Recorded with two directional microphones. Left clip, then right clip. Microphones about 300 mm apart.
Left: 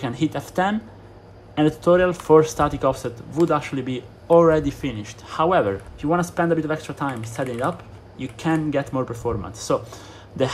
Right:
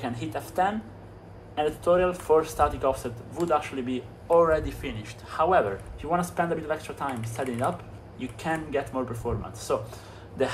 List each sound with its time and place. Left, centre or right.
0.0 s speech: left
2.0 s speech: left